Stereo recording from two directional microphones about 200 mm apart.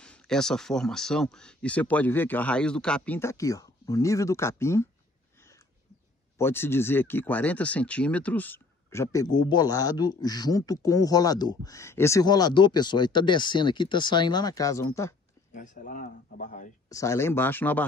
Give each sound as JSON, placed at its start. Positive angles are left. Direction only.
{"t": 0.0, "sound": "speech", "side_deg": 5}
{"t": 6.3, "sound": "speech", "side_deg": 10}
{"t": 15.5, "sound": "speech", "side_deg": 40}
{"t": 16.9, "sound": "speech", "side_deg": 15}